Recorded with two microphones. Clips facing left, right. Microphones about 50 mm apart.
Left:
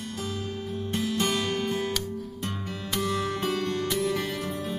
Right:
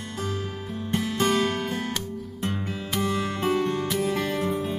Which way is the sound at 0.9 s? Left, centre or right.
Right.